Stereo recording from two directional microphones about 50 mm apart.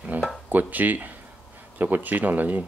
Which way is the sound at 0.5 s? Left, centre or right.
Right.